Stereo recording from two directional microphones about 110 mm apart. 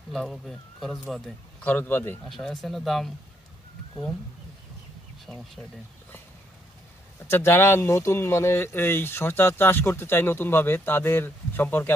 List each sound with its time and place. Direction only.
0.1 s speech: centre (ahead or behind)
1.6 s a man's voice: 15° left (ahead or behind)
2.2 s speech: centre (ahead or behind)
5.3 s speech: 5° left (ahead or behind)
7.2 s speech: 20° left (ahead or behind)